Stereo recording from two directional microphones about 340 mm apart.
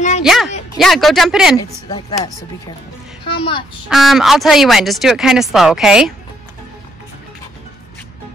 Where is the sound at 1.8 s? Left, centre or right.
Centre.